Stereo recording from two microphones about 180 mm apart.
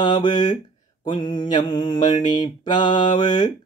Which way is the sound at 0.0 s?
25° left (ahead or behind).